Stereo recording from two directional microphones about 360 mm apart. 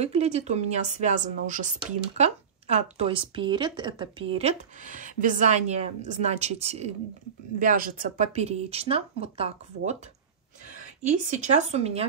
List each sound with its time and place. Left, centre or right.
0.0 s a woman's voice: centre
11.0 s speech: centre